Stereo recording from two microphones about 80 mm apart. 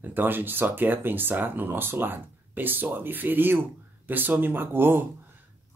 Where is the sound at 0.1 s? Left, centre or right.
Right.